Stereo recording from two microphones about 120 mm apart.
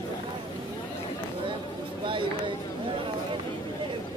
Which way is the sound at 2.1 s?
45° right (ahead or behind).